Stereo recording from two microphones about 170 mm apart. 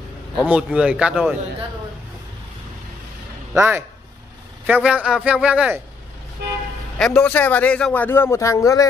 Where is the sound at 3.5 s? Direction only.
15° right (ahead or behind).